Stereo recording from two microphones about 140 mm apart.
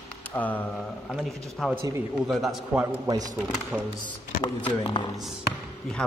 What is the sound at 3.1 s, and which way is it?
Speech, 25° right (ahead or behind).